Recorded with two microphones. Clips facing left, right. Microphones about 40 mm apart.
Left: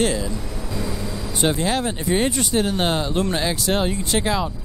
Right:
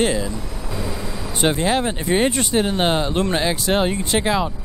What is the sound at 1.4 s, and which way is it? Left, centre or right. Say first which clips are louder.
Speech: right 2 dB; right.